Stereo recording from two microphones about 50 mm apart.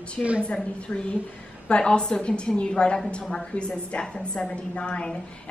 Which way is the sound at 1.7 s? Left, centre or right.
Centre.